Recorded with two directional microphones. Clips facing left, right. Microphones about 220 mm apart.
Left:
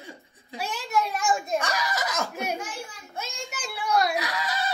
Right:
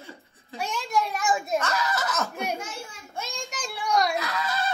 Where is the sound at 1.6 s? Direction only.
10° left (ahead or behind).